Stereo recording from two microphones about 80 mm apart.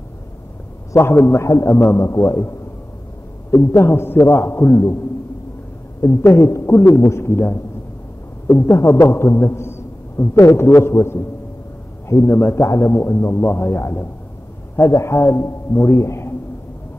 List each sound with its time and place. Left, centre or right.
1.1 s a man's voice: left
3.5 s a man's voice: left
5.9 s a man's voice: left